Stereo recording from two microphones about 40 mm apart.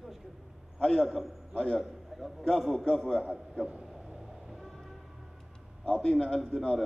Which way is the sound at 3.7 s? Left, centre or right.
Centre.